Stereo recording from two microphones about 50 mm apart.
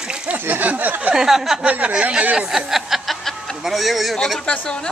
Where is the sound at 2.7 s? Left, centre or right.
Centre.